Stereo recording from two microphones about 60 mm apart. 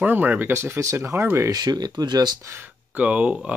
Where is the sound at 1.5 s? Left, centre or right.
Right.